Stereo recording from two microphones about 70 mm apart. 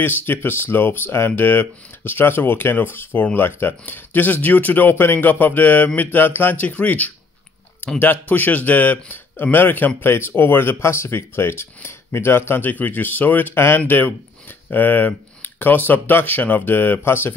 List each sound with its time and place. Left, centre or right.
0.0 s a man's voice: left